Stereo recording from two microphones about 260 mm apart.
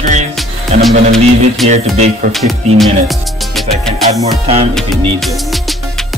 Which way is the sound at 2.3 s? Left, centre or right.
Centre.